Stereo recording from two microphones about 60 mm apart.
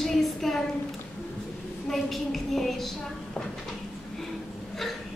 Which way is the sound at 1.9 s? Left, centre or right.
Centre.